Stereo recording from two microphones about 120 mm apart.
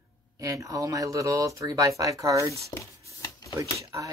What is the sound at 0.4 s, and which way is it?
Speech, 25° right (ahead or behind).